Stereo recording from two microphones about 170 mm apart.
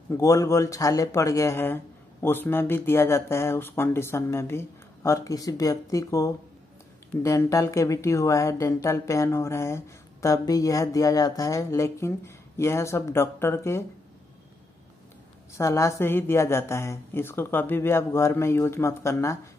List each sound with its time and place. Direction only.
0.1 s speech: 20° left (ahead or behind)
15.5 s speech: 15° left (ahead or behind)